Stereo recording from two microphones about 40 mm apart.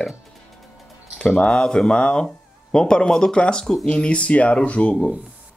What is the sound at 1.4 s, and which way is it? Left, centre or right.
Speech, centre.